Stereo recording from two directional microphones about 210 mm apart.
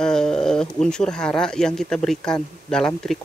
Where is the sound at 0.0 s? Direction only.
5° left (ahead or behind).